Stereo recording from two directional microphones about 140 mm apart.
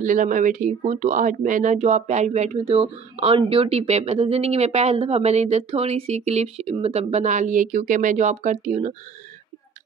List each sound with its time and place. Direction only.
0.0 s speech: 70° right (ahead or behind)